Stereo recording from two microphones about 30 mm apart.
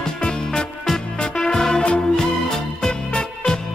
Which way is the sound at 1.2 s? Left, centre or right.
Left.